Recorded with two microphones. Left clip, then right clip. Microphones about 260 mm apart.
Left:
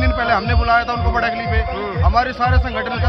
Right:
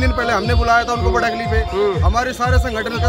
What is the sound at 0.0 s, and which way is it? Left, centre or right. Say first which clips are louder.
Music: left 1 dB; centre.